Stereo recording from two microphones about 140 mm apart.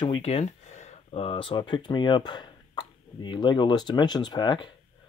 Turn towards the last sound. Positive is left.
turn(degrees=30)  # may be behind; listen again after turning